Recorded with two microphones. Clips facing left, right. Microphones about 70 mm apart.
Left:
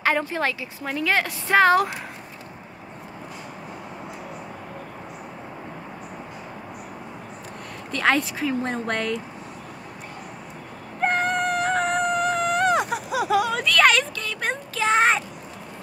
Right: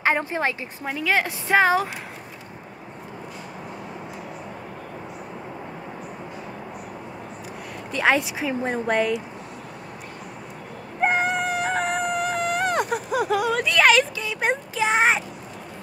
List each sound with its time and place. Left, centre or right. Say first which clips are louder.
0.0 s speech: even; right
0.8 s speech: even; centre
7.9 s speech: right 1 dB; centre
11.0 s whimper: even; centre
13.7 s a sound: right 1 dB; centre